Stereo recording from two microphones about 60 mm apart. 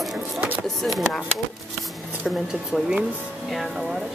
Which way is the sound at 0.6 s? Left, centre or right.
Centre.